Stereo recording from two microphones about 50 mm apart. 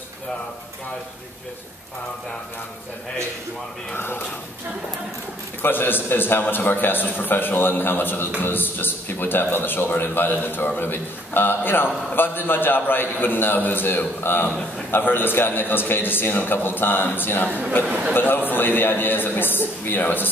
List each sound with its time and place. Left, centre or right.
3.9 s a man's voice: left
5.6 s a man's voice: left